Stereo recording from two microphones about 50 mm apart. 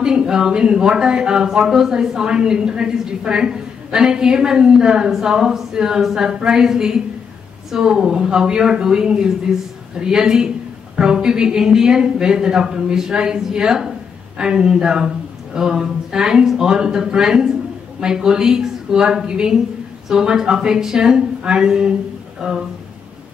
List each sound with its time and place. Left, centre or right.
0.0 s speech: centre